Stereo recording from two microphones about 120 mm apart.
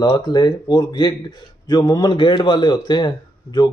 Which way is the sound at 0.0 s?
40° left (ahead or behind).